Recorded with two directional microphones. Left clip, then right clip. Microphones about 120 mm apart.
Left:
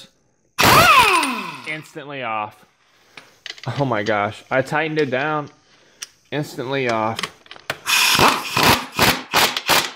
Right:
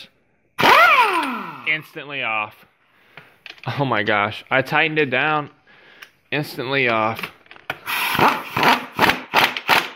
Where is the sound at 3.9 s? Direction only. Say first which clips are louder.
Right 2 dB; 20° left (ahead or behind).